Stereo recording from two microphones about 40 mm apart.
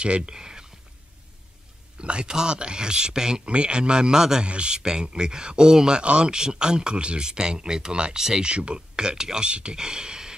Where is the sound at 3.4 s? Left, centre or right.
Right.